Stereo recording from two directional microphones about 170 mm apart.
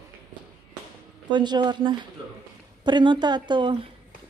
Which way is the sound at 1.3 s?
25° right (ahead or behind).